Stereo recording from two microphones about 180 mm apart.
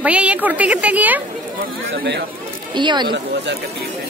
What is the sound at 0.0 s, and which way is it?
A woman's voice, 5° right (ahead or behind).